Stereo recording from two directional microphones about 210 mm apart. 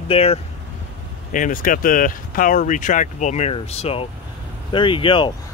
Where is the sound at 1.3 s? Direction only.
40° left (ahead or behind); by 5.3 s 25° left (ahead or behind).